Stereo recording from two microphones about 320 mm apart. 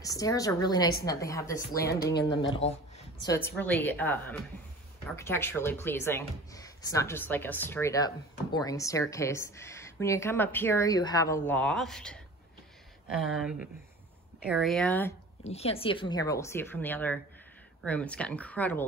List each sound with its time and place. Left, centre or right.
0.0 s a woman's voice: centre
1.8 s a woman's voice: left
3.3 s a woman's voice: centre
15.4 s a woman's voice: centre